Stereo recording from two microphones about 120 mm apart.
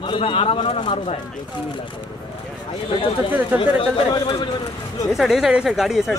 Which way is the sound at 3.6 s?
50° left (ahead or behind).